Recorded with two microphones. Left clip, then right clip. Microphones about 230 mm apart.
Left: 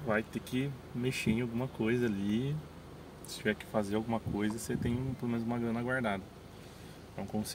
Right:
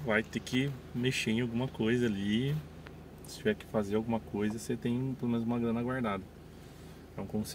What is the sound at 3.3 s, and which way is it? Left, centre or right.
Speech, centre.